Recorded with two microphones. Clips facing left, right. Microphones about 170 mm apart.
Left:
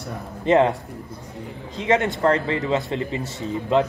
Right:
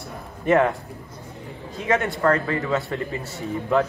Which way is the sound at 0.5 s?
25° left (ahead or behind).